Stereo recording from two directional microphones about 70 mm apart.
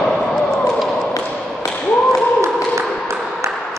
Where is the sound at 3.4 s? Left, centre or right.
Right.